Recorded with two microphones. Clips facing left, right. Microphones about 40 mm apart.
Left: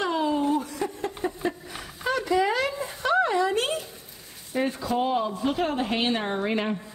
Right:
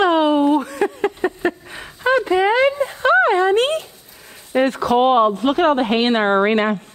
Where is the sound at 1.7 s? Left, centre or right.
Right.